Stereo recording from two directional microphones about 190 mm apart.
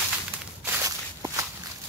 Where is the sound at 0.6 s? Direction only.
15° right (ahead or behind).